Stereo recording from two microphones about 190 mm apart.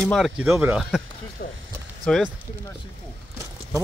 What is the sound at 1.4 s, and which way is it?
Speech, 50° left (ahead or behind).